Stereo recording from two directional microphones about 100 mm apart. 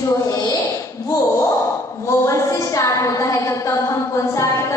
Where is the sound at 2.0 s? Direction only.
30° left (ahead or behind).